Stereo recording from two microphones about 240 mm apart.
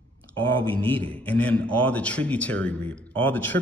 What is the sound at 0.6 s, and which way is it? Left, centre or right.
Speech, right.